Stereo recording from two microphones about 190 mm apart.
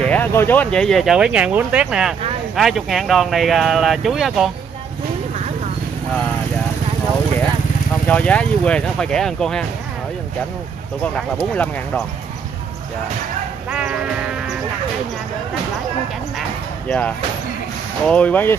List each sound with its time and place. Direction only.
0.0 s speech: 10° left (ahead or behind)
8.1 s speech: 5° left (ahead or behind)
11.1 s speech: 5° left (ahead or behind)
13.7 s speech: 5° right (ahead or behind)
16.3 s a sound: 5° left (ahead or behind)
18.0 s speech: 5° left (ahead or behind)